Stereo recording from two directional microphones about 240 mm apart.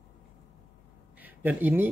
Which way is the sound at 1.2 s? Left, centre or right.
Centre.